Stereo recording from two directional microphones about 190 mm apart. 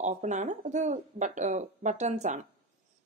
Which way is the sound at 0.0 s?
40° right (ahead or behind).